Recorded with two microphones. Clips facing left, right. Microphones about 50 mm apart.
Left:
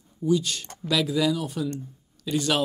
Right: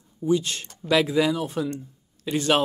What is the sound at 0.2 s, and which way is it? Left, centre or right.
Speech, right.